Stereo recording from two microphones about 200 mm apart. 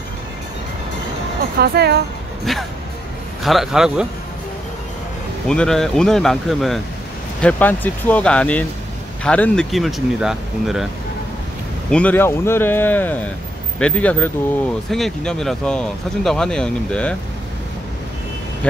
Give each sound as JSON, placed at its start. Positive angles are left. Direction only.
{"t": 1.6, "sound": "speech", "side_deg": -55}
{"t": 3.4, "sound": "speech", "side_deg": 0}
{"t": 5.5, "sound": "a man's voice", "side_deg": 5}
{"t": 11.9, "sound": "a man's voice", "side_deg": 5}